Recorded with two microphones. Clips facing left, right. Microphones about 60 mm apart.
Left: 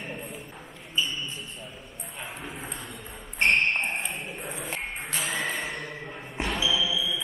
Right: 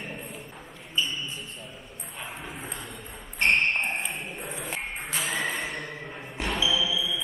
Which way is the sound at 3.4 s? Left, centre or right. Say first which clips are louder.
Even; left.